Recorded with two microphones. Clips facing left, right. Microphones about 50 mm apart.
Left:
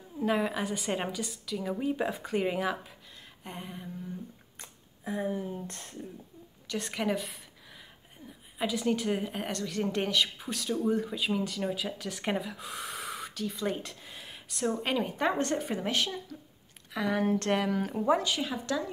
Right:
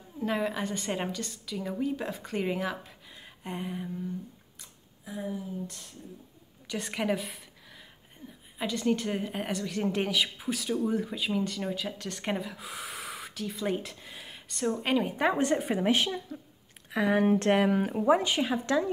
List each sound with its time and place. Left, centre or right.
0.2 s a woman's voice: centre
1.8 s a woman's voice: centre
4.6 s speech: left
6.7 s a woman's voice: centre
18.2 s speech: right